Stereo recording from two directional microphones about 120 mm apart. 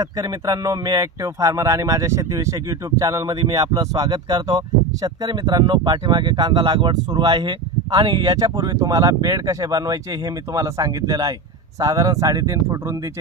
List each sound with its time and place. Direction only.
0.0 s speech: 30° right (ahead or behind)